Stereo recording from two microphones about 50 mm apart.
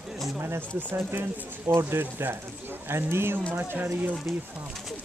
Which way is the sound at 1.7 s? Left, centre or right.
Right.